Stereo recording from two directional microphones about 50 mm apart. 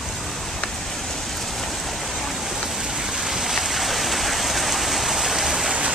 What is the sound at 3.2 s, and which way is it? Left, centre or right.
Rain, centre.